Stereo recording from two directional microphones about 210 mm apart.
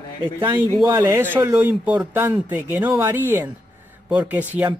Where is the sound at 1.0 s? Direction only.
10° right (ahead or behind).